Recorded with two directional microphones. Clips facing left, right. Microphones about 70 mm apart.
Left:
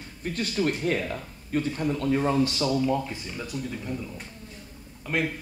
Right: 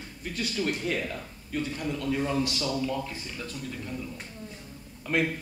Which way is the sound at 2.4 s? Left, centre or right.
Left.